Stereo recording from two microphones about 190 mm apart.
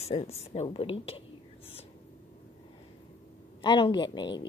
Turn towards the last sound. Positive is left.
turn(degrees=25)  # may be behind; listen again after turning